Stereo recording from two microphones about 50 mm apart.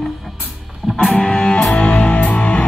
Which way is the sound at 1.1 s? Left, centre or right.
Centre.